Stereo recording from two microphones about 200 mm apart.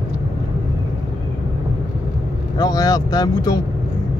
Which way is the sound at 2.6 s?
20° left (ahead or behind).